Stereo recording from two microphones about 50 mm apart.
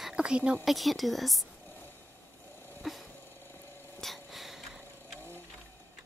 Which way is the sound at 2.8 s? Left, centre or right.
Centre.